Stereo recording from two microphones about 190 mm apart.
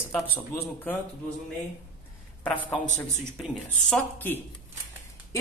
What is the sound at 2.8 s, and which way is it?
Speech, 40° left (ahead or behind).